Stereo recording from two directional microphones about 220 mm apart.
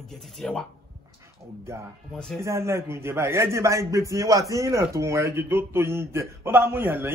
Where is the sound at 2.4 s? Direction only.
10° right (ahead or behind).